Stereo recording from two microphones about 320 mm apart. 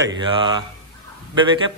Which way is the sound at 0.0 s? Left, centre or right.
Centre.